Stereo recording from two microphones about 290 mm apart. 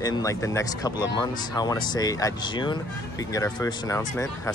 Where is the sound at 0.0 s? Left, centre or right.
Centre.